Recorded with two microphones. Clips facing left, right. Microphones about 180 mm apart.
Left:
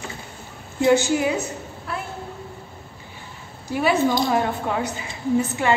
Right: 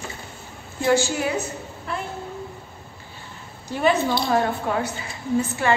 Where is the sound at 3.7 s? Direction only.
10° left (ahead or behind).